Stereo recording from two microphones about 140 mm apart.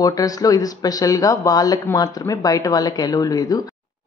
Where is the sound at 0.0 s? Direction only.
25° left (ahead or behind).